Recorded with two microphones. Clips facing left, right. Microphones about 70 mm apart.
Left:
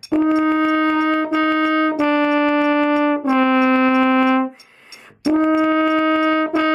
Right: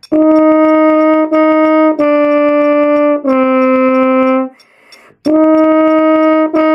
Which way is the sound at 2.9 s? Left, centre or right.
Centre.